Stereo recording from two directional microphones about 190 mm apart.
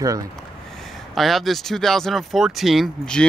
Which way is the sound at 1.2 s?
Centre (ahead or behind).